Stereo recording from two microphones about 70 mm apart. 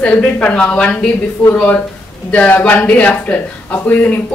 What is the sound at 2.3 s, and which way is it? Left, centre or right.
A woman's voice, centre.